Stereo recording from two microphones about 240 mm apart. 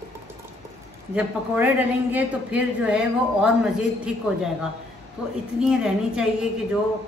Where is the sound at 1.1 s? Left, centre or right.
Centre.